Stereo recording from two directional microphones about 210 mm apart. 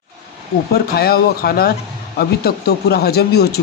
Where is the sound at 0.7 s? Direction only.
45° left (ahead or behind).